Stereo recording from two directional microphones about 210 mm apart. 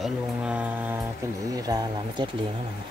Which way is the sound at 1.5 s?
20° right (ahead or behind).